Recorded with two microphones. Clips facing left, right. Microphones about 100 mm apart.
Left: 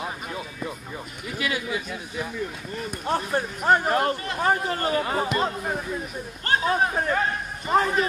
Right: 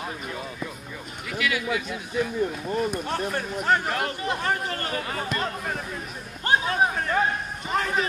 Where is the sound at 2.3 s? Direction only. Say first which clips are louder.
Right 6 dB; 40° right (ahead or behind).